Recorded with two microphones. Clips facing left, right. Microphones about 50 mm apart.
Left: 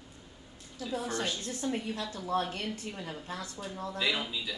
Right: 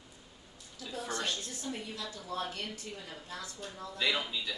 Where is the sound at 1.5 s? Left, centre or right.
Left.